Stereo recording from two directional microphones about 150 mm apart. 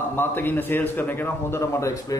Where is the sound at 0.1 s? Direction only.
15° left (ahead or behind).